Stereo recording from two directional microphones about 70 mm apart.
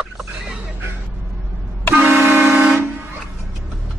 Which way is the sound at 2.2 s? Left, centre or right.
Right.